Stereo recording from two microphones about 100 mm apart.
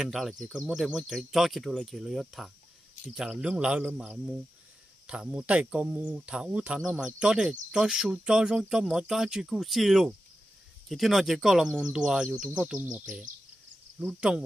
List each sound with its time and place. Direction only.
0.0 s speech: 5° right (ahead or behind)
14.0 s speech: 5° right (ahead or behind)